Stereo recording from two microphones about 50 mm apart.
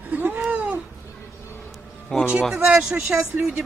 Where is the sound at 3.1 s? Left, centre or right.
Right.